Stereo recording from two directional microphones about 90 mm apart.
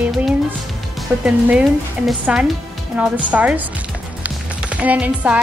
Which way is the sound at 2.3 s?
10° right (ahead or behind).